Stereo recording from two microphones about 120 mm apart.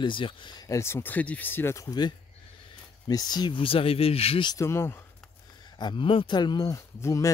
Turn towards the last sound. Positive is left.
turn(degrees=25)  # may be behind; listen again after turning